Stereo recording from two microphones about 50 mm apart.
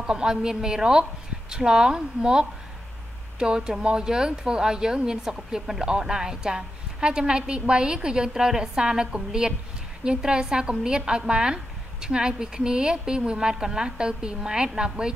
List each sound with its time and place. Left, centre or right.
0.0 s speech: centre